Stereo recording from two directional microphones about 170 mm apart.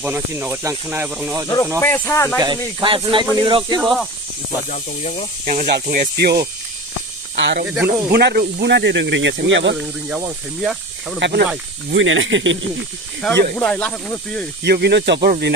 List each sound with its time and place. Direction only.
0.0 s speech: 10° right (ahead or behind)
1.8 s speech: 15° left (ahead or behind)
2.4 s speech: 25° right (ahead or behind)
4.6 s speech: 40° left (ahead or behind)
5.4 s speech: 45° right (ahead or behind)
5.9 s speech: 65° right (ahead or behind)
7.3 s speech: 90° right
7.6 s speech: 10° right (ahead or behind)
8.1 s speech: 70° right (ahead or behind); by 9.8 s 90° right
9.8 s speech: 5° right (ahead or behind)
11.1 s speech: 90° right
13.2 s speech: centre (ahead or behind)
14.6 s speech: 75° right (ahead or behind)
15.2 s speech: 55° right (ahead or behind)